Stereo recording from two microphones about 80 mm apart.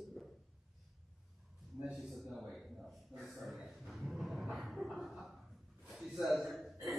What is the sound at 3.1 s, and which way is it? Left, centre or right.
Dog, centre.